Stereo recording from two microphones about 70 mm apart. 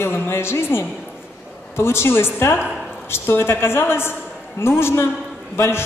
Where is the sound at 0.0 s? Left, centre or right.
Left.